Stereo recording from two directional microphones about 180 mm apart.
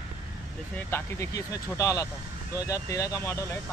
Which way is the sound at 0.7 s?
15° left (ahead or behind).